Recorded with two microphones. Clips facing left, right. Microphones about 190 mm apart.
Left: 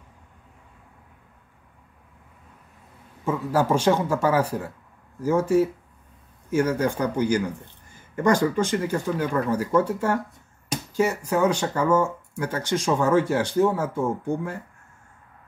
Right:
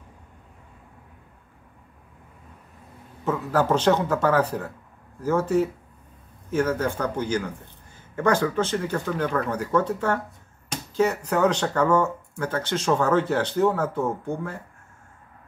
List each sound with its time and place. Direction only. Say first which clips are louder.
3.3 s speech: even; 10° left (ahead or behind)